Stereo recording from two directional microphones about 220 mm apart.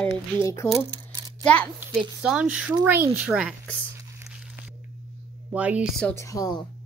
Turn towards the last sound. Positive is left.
turn(degrees=20)  # may be behind; listen again after turning